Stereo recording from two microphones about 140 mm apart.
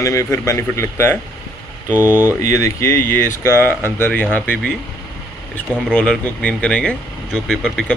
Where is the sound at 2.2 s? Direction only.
20° left (ahead or behind).